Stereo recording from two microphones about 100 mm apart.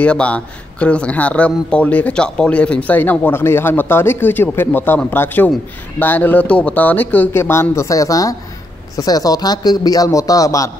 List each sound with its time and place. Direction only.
0.0 s a man's voice: 10° left (ahead or behind); by 10.7 s 35° left (ahead or behind)